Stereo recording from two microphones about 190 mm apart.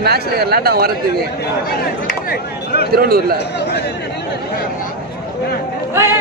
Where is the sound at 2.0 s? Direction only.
50° left (ahead or behind).